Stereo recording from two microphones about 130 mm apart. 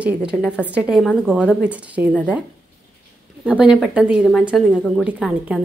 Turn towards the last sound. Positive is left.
turn(degrees=-5)  # may be behind; listen again after turning